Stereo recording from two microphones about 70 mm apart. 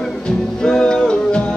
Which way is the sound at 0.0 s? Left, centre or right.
Centre.